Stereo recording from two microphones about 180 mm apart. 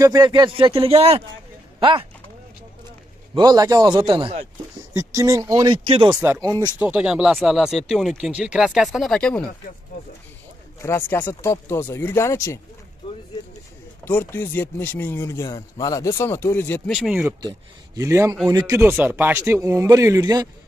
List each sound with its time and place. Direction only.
0.0 s speech: 25° right (ahead or behind)
3.3 s speech: 20° right (ahead or behind)
4.9 s speech: 15° right (ahead or behind)
6.8 s speech: 5° right (ahead or behind)
10.8 s speech: 15° left (ahead or behind)
14.0 s speech: 10° left (ahead or behind)
16.9 s speech: 5° right (ahead or behind)
17.4 s speech: 20° right (ahead or behind)